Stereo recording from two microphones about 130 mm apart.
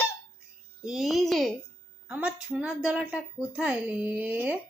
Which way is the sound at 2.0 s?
10° right (ahead or behind).